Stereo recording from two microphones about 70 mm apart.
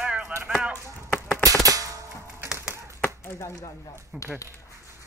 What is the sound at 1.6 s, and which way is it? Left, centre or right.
Music, right.